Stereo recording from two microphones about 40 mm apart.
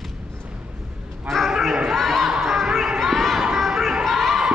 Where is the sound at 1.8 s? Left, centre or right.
Centre.